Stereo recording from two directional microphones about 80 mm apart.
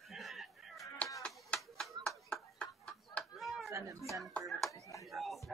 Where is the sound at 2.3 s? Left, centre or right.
Centre.